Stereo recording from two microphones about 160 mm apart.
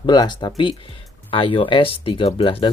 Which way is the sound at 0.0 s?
25° left (ahead or behind).